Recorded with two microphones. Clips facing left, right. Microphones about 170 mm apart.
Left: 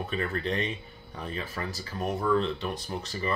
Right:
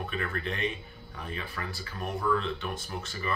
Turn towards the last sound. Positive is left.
turn(degrees=35)  # may be behind; listen again after turning